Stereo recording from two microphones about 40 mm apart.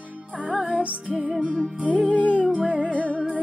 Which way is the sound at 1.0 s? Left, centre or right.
Right.